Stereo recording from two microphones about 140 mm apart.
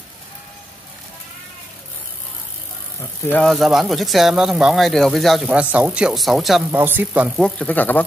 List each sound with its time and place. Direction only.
3.4 s speech: centre (ahead or behind)
5.5 s speech: 10° right (ahead or behind)
6.7 s speech: 15° right (ahead or behind)
7.3 s speech: 5° left (ahead or behind)